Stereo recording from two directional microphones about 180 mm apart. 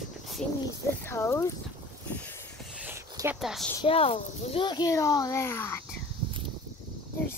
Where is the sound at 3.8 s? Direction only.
30° left (ahead or behind); by 5.8 s 15° left (ahead or behind).